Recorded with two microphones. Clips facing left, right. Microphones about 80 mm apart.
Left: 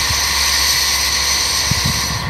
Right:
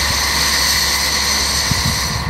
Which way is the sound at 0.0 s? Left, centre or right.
Right.